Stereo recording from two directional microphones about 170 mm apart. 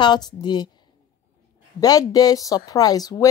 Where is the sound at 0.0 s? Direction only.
25° left (ahead or behind).